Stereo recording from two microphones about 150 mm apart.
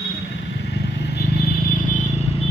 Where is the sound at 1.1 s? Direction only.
90° left; by 2.3 s 55° left (ahead or behind).